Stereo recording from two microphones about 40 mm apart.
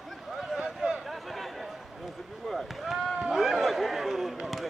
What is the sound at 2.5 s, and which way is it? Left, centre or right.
Rowboat, centre.